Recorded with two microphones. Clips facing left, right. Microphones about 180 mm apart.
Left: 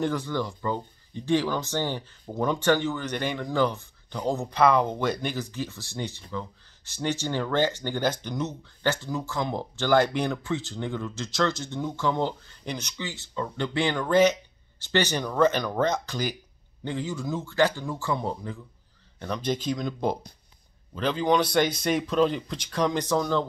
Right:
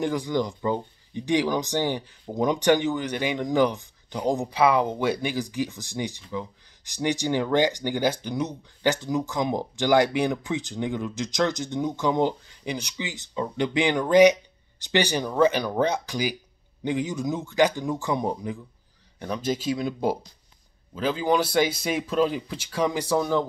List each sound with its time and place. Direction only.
0.0 s speech: 15° right (ahead or behind)